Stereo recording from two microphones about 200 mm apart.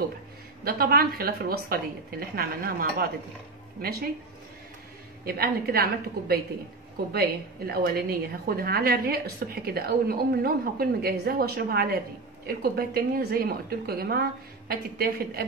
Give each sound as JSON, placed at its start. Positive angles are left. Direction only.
{"t": 0.7, "sound": "a woman's voice", "side_deg": -50}
{"t": 5.2, "sound": "a woman's voice", "side_deg": -50}